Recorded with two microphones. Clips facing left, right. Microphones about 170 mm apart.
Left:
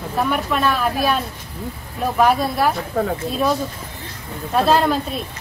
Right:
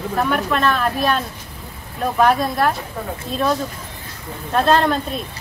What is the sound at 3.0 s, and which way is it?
Speech, 90° left.